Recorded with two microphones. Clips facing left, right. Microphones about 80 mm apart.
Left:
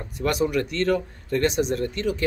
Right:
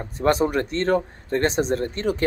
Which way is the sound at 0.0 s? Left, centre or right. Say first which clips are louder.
Right 4 dB; right.